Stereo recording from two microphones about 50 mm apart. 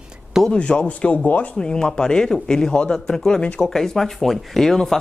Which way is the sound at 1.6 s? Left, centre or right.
Centre.